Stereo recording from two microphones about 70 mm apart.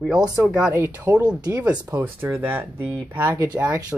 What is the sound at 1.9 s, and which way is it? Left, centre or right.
Speech, right.